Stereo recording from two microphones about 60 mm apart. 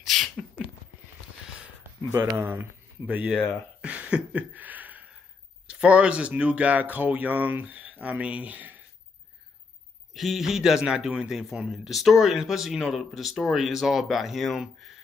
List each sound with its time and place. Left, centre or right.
0.0 s a sound: centre
2.3 s speech: right
3.1 s speech: right
3.8 s a sound: right
5.7 s speech: centre
10.1 s speech: centre